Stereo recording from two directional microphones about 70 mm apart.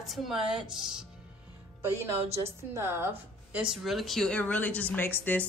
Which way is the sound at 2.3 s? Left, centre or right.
Right.